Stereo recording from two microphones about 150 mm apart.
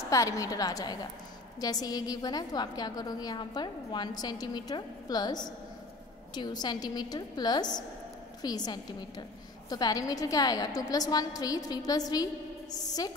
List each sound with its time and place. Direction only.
0.1 s a woman's voice: 20° left (ahead or behind)